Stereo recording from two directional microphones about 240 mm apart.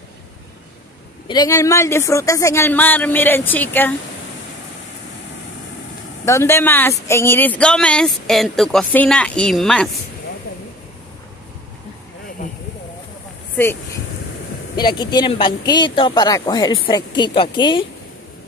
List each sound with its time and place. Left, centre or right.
1.2 s speech: centre
6.2 s speech: centre
14.8 s speech: centre